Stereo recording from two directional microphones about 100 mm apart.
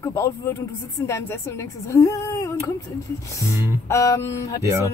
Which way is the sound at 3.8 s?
30° left (ahead or behind).